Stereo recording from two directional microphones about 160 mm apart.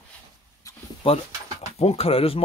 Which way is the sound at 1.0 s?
35° left (ahead or behind).